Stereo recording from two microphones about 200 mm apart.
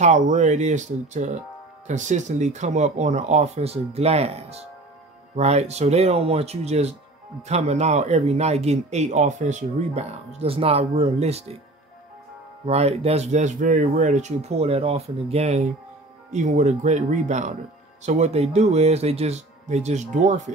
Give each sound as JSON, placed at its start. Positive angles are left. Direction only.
{"t": 0.0, "sound": "speech", "side_deg": -35}
{"t": 12.6, "sound": "speech", "side_deg": -30}